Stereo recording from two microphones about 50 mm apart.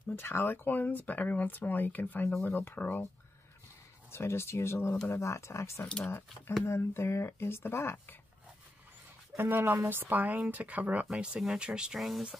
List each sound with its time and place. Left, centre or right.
0.1 s speech: left
0.7 s speech: left
4.1 s speech: left
5.0 s speech: left
6.0 s speech: left
9.4 s speech: right
11.1 s speech: centre
11.9 s speech: centre